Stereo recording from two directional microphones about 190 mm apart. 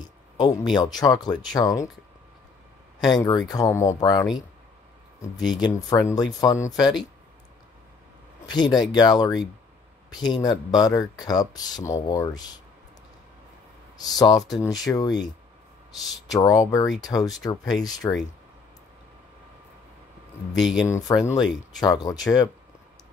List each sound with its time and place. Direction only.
0.0 s a sound: 20° left (ahead or behind)
0.7 s speech: 20° left (ahead or behind)
3.1 s speech: 25° left (ahead or behind)
5.5 s speech: 20° left (ahead or behind)
8.5 s speech: 20° left (ahead or behind)
13.9 s speech: 20° left (ahead or behind)
20.5 s speech: centre (ahead or behind)
21.8 s speech: 20° left (ahead or behind)